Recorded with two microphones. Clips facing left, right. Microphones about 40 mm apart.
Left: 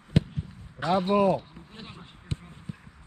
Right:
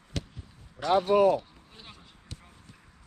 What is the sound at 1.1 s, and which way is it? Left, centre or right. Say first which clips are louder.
Speech: right 1 dB; left.